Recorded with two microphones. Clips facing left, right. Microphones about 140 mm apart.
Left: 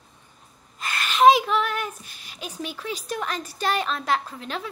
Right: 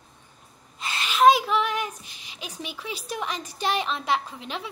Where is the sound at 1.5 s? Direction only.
15° right (ahead or behind).